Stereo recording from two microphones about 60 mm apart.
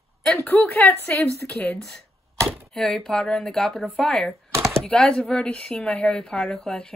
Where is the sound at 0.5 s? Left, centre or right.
Centre.